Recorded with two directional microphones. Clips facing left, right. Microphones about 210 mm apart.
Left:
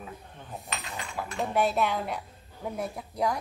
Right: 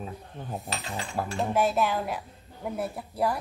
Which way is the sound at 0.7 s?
30° right (ahead or behind).